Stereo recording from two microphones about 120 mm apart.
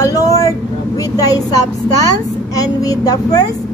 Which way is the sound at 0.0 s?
30° left (ahead or behind).